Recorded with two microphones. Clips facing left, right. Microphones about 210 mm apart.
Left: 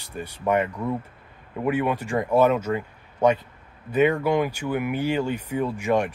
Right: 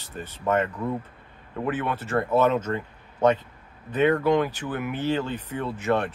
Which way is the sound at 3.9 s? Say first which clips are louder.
Even; 10° left (ahead or behind).